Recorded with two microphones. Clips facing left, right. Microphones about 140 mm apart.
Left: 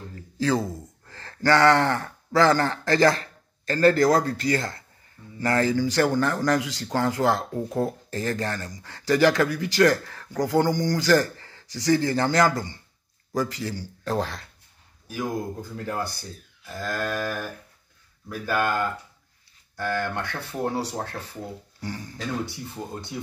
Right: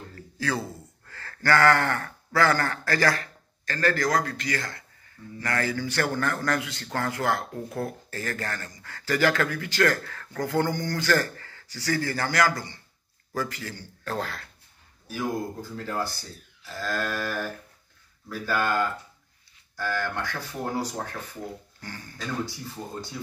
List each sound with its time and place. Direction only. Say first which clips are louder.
0.1 s speech: left 6 dB; 20° left (ahead or behind)
15.7 s speech: even; 20° left (ahead or behind)
19.8 s speech: left 2 dB; 20° left (ahead or behind)